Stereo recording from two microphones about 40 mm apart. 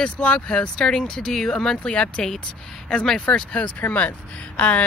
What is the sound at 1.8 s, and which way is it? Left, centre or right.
Speech, left.